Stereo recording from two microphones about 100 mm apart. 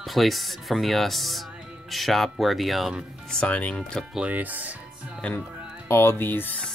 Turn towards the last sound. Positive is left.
turn(degrees=20)  # may be behind; listen again after turning